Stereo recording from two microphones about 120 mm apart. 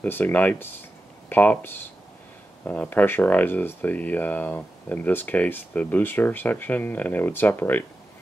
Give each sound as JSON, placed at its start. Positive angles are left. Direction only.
{"t": 0.0, "sound": "speech", "side_deg": 15}